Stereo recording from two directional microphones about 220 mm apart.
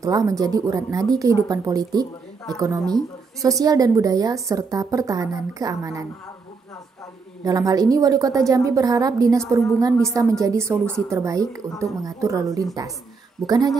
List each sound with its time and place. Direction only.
0.0 s a woman's voice: 15° right (ahead or behind)
2.8 s a woman's voice: centre (ahead or behind)
3.4 s a woman's voice: 15° right (ahead or behind)
7.4 s a woman's voice: 15° right (ahead or behind)